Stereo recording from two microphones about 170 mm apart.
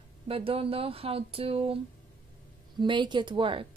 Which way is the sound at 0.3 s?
35° right (ahead or behind).